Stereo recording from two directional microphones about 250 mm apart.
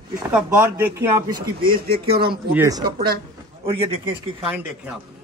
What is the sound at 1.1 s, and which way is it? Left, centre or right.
Speech, centre.